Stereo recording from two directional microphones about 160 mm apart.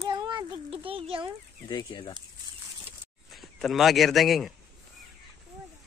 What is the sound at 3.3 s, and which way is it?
Speech, centre (ahead or behind).